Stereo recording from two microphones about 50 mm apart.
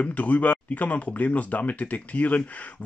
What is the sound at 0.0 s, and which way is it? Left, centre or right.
Speech, left.